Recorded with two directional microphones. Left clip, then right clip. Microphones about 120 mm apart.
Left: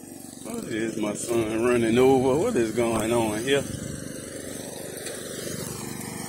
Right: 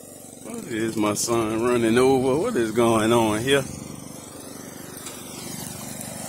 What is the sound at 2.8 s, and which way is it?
Speech, 50° right (ahead or behind).